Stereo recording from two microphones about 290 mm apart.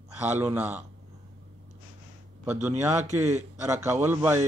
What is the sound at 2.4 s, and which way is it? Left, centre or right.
Speech, centre.